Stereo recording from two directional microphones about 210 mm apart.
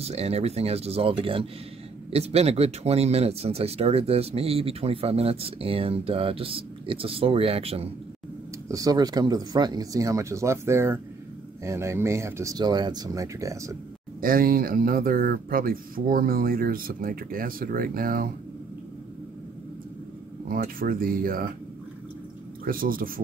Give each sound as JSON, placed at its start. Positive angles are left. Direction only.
{"t": 0.0, "sound": "speech", "side_deg": -30}
{"t": 8.6, "sound": "speech", "side_deg": -15}
{"t": 14.2, "sound": "speech", "side_deg": -45}
{"t": 20.4, "sound": "speech", "side_deg": -45}
{"t": 22.7, "sound": "speech", "side_deg": -45}